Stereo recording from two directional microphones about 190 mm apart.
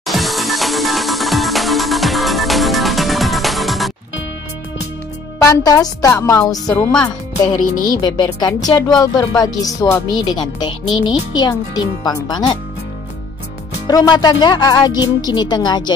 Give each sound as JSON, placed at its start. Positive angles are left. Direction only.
{"t": 0.0, "sound": "music", "side_deg": 0}
{"t": 5.5, "sound": "speech", "side_deg": 20}
{"t": 13.8, "sound": "speech", "side_deg": 20}